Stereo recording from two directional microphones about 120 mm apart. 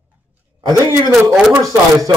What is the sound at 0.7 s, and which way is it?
Speech, 25° right (ahead or behind).